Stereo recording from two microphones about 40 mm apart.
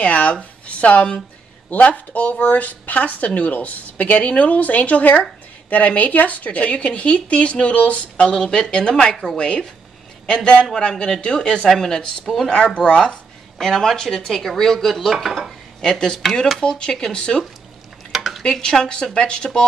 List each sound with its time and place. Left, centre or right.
0.0 s speech: left
8.3 s a woman's voice: centre
9.1 s speech: centre
9.4 s a woman's voice: left
11.7 s speech: centre
12.4 s a woman's voice: left
13.6 s speech: centre
15.8 s a woman's voice: centre
18.1 s dishes: centre
18.4 s a woman's voice: left